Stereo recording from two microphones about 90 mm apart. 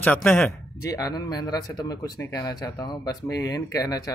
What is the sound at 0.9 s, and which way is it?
Speech, 45° left (ahead or behind).